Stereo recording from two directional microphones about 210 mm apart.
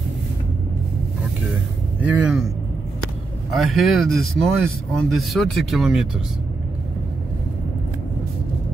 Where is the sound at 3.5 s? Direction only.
Centre (ahead or behind).